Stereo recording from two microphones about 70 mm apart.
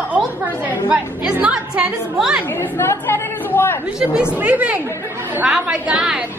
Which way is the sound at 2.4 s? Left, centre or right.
Left.